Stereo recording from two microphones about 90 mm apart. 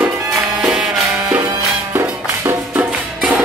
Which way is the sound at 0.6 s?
5° right (ahead or behind).